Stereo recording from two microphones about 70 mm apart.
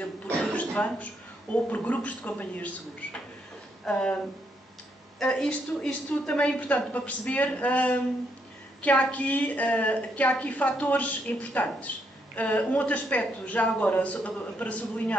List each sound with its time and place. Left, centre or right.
0.4 s throat clearing: centre
1.5 s a woman's voice: left
5.2 s a woman's voice: centre